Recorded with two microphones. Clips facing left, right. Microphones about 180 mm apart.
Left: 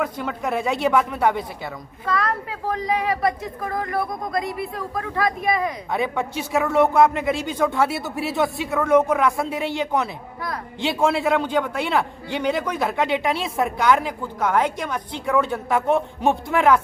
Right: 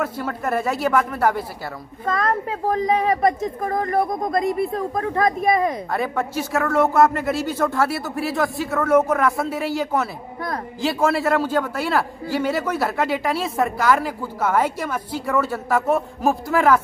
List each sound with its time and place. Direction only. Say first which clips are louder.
0.0 s a man's voice: right 1 dB; 5° right (ahead or behind)
2.0 s a woman's voice: right 2 dB; 45° right (ahead or behind)
5.9 s a man's voice: even; centre (ahead or behind)